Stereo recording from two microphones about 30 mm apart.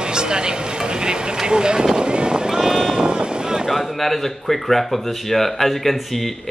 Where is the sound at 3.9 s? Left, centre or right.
Centre.